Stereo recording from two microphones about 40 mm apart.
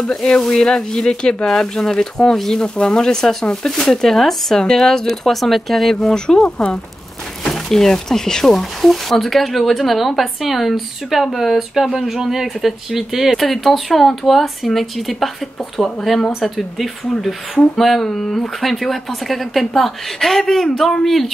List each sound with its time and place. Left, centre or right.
0.0 s speech: centre
2.6 s speech: left; by 5.9 s centre
5.9 s speech: centre
13.4 s speech: centre